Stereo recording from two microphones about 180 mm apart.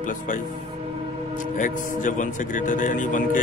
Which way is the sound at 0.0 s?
45° left (ahead or behind).